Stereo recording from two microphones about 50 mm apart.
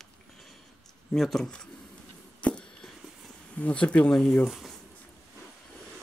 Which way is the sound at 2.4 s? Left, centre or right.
Left.